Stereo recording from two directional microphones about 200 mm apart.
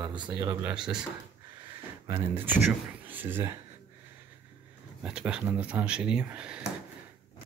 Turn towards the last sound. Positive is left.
turn(degrees=-5)  # may be behind; listen again after turning